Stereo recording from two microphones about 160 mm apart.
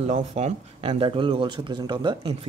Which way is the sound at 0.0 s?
45° right (ahead or behind).